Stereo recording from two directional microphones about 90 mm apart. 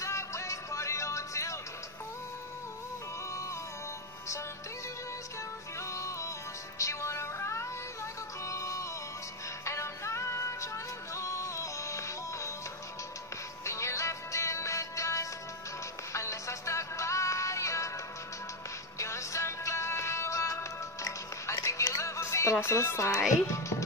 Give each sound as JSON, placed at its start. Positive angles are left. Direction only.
{"t": 0.0, "sound": "music", "side_deg": 35}
{"t": 5.8, "sound": "music", "side_deg": 35}
{"t": 13.7, "sound": "music", "side_deg": 35}
{"t": 18.9, "sound": "music", "side_deg": 35}
{"t": 23.4, "sound": "speech", "side_deg": 35}